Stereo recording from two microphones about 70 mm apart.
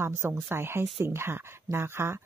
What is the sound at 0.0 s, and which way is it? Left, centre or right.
Speech, right.